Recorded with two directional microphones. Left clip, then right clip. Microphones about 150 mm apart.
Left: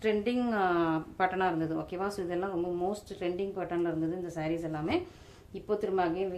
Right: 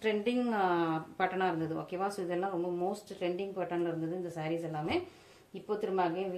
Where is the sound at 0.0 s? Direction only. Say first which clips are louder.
Left 2 dB; 35° left (ahead or behind).